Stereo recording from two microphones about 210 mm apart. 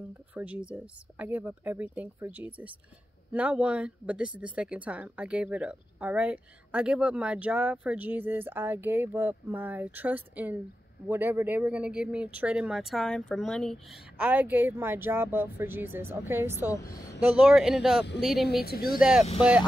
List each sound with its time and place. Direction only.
0.3 s a woman's voice: 5° right (ahead or behind)
18.5 s speech: 45° left (ahead or behind)
18.9 s speech: 5° right (ahead or behind)